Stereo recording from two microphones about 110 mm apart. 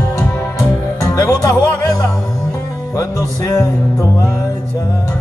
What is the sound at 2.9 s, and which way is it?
Music, 30° left (ahead or behind).